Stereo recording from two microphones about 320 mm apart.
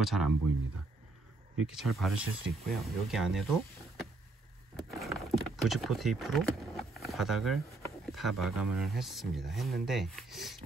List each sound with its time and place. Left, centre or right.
0.0 s speech: centre
1.7 s speech: centre
4.7 s speech: centre